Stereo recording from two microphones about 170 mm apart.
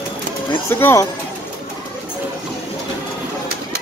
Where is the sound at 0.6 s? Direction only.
15° left (ahead or behind).